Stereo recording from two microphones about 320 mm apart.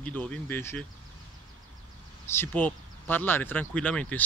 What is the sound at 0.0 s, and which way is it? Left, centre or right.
Speech, centre.